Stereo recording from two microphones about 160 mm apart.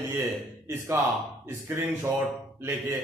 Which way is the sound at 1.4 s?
15° right (ahead or behind).